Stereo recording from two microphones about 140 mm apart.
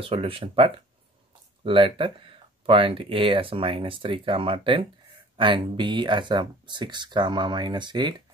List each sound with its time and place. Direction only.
0.0 s speech: 40° right (ahead or behind)